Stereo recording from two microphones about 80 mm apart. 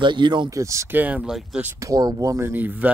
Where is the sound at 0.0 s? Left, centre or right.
Right.